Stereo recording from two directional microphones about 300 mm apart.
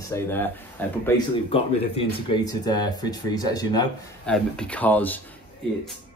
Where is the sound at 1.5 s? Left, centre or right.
Centre.